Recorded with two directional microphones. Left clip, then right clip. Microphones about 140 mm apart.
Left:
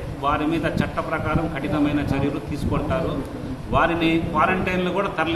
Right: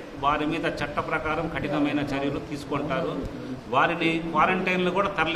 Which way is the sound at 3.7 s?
10° right (ahead or behind).